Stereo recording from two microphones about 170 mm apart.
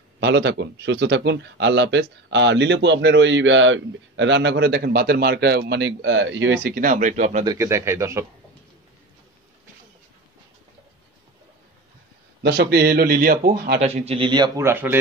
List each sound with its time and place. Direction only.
0.2 s speech: 90° right; by 7.4 s 45° right (ahead or behind)
7.4 s speech: 15° right (ahead or behind)
12.4 s speech: 85° right; by 13.7 s 60° right (ahead or behind)
13.7 s a man's voice: 40° right (ahead or behind)
14.6 s speech: 15° right (ahead or behind)